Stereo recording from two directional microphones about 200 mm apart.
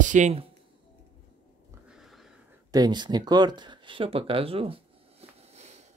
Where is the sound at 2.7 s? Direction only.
20° right (ahead or behind).